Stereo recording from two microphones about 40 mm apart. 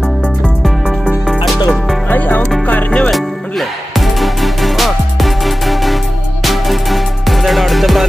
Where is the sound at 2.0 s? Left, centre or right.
Left.